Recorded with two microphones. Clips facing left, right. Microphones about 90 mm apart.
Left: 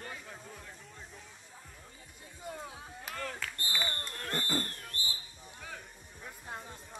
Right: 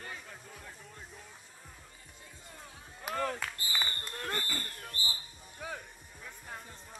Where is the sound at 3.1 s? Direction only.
40° right (ahead or behind).